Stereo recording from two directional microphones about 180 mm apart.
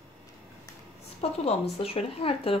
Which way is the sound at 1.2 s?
35° left (ahead or behind).